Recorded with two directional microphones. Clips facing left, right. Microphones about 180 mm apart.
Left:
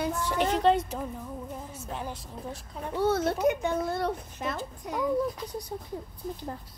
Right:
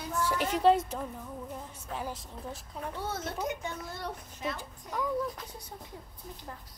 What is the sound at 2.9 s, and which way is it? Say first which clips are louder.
Speech: left 12 dB; 70° left (ahead or behind).